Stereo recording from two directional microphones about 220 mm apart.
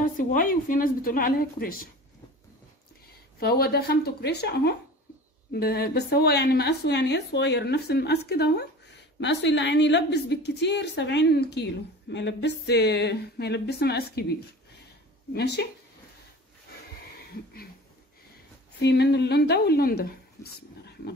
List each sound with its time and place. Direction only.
0.0 s a woman's voice: 40° left (ahead or behind)
3.3 s a woman's voice: 45° left (ahead or behind)
15.3 s a woman's voice: 50° left (ahead or behind)
18.8 s a woman's voice: 50° left (ahead or behind)
20.4 s speech: 15° left (ahead or behind)